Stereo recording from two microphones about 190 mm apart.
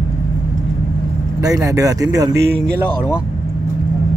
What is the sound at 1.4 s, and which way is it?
Speech, 15° right (ahead or behind).